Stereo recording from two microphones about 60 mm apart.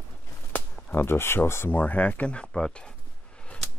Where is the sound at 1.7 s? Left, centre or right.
Left.